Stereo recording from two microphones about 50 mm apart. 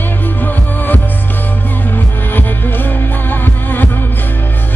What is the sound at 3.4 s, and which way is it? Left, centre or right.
Music, left.